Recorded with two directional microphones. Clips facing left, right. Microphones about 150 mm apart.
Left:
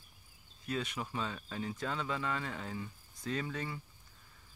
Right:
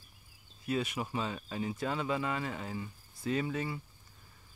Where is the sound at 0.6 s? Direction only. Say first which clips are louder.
Right 4 dB; 10° right (ahead or behind).